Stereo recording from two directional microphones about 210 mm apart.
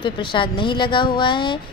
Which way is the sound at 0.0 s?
25° left (ahead or behind).